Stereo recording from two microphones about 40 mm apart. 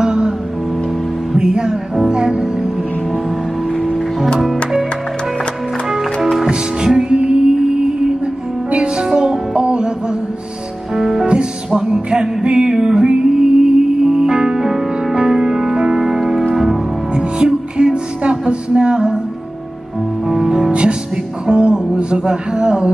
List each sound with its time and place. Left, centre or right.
0.0 s music: right
1.3 s music: centre
3.8 s music: centre
6.5 s music: centre
11.0 s music: centre
11.2 s music: right; by 16.8 s centre
17.1 s music: right
20.2 s music: centre